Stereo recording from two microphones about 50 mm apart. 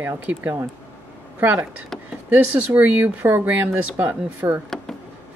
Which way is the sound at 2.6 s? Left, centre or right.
Right.